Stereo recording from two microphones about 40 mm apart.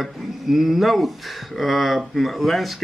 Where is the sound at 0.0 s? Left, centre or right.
Centre.